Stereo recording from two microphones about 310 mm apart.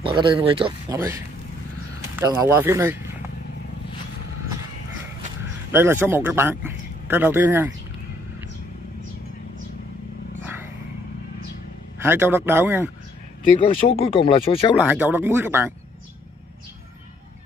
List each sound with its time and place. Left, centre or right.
0.0 s a man's voice: centre
2.1 s a man's voice: centre
5.7 s a man's voice: centre
12.0 s a man's voice: centre
13.8 s speech: centre
14.9 s a man's voice: centre